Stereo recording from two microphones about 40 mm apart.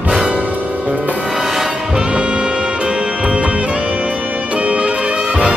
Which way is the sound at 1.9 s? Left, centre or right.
Right.